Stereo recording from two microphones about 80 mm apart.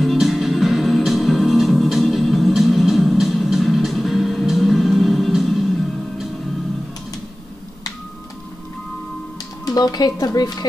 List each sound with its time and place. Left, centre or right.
0.0 s music: centre
9.7 s speech: left